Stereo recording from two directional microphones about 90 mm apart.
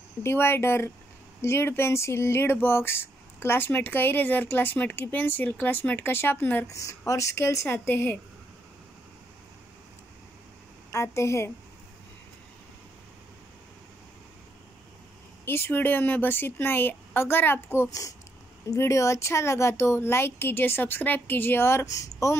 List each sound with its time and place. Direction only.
0.2 s speech: 30° left (ahead or behind)
6.7 s speech: 35° left (ahead or behind)
10.9 s a woman's voice: 30° left (ahead or behind)
15.4 s speech: 25° left (ahead or behind)
17.8 s a woman's voice: 35° left (ahead or behind)